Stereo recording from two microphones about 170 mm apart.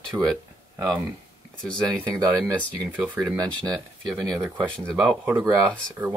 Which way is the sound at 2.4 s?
10° right (ahead or behind).